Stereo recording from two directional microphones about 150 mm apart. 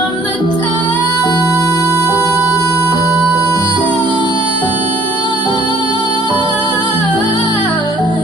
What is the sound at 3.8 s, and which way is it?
Music, 30° right (ahead or behind).